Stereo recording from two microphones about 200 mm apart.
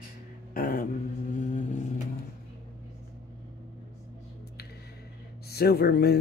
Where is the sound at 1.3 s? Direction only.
40° left (ahead or behind).